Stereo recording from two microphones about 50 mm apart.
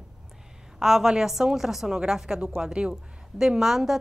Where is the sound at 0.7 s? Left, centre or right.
Centre.